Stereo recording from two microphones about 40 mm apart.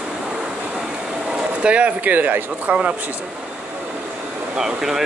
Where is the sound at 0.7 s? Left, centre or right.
Centre; by 2.4 s right.